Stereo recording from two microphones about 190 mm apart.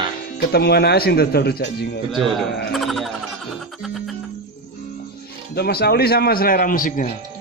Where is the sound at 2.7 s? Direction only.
Centre (ahead or behind).